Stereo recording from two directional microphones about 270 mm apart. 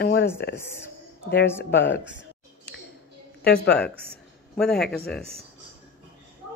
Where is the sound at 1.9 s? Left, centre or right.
Left.